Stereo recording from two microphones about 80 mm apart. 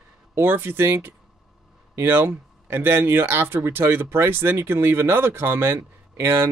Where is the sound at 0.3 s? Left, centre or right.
Right.